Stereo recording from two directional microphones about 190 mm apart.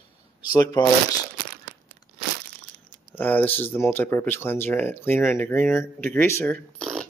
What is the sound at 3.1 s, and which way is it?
Speech, 10° left (ahead or behind).